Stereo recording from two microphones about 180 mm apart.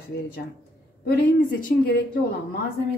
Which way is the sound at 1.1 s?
55° left (ahead or behind).